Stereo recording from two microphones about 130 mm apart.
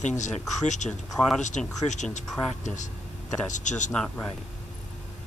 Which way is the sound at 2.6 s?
70° left (ahead or behind).